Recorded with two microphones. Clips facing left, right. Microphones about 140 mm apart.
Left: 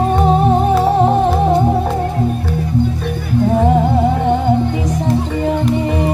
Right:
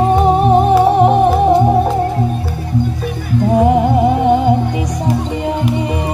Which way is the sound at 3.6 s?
15° right (ahead or behind).